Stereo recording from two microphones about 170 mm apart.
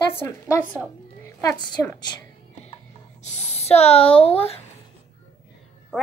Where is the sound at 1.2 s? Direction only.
20° left (ahead or behind).